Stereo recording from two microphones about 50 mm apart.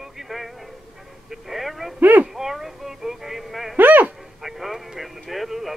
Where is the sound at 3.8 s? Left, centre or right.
Right.